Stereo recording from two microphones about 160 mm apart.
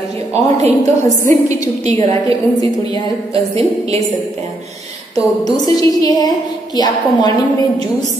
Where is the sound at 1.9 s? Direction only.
35° right (ahead or behind).